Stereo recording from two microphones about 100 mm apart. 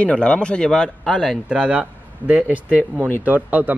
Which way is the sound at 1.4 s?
10° right (ahead or behind).